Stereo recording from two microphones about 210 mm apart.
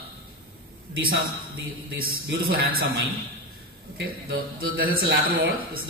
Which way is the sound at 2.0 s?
45° right (ahead or behind).